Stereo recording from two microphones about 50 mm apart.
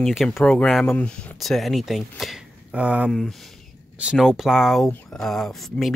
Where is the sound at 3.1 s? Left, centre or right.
Centre.